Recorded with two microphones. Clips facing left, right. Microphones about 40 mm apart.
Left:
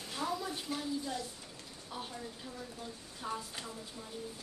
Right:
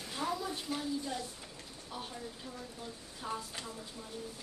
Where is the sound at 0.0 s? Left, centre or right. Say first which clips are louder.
Right 1 dB; centre.